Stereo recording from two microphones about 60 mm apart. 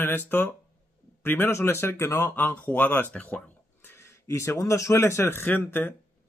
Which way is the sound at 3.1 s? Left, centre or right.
Left.